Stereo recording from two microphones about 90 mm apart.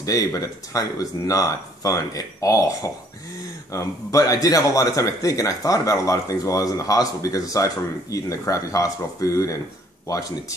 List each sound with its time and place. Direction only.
0.0 s a man's voice: 40° left (ahead or behind)